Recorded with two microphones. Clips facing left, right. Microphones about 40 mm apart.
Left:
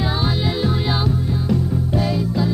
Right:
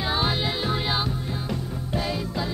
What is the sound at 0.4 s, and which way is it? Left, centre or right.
Music, centre.